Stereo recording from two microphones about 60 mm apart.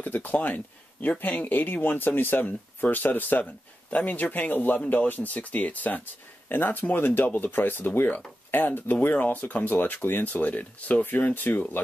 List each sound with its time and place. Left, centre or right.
0.0 s speech: left